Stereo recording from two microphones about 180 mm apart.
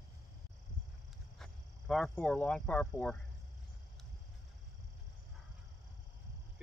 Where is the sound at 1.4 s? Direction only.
Centre (ahead or behind).